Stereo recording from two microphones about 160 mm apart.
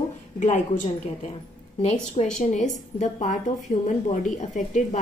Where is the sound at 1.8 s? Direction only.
45° left (ahead or behind).